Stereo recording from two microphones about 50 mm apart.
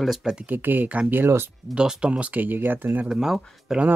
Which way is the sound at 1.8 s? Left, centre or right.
Centre.